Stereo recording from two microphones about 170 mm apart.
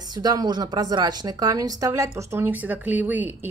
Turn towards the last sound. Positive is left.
turn(degrees=-10)  # may be behind; listen again after turning